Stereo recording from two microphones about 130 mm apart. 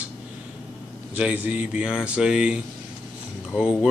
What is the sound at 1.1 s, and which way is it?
Speech, 10° right (ahead or behind).